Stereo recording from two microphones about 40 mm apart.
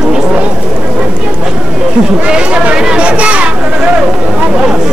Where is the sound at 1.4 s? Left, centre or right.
Right.